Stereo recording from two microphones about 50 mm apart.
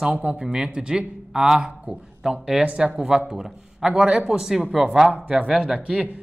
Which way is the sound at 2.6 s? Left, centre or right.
Right.